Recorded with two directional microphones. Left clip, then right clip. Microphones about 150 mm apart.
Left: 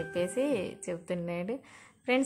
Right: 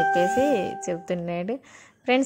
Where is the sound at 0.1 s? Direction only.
30° right (ahead or behind).